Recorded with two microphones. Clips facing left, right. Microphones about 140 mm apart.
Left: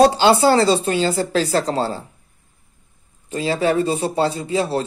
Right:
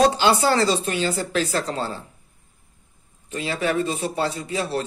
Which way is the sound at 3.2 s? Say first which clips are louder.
Left 5 dB; 30° left (ahead or behind).